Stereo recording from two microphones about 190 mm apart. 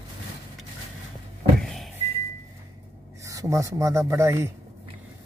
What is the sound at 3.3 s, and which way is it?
Speech, 15° right (ahead or behind).